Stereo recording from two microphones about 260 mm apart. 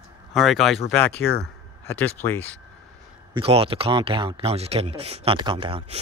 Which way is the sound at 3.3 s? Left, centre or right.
Right.